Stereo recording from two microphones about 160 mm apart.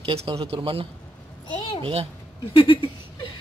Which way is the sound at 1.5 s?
30° left (ahead or behind).